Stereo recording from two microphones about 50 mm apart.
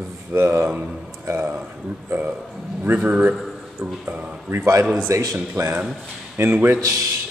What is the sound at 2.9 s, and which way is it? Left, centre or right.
Speech, right.